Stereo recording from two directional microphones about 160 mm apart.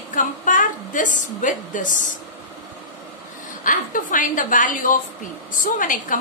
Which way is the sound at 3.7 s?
55° left (ahead or behind).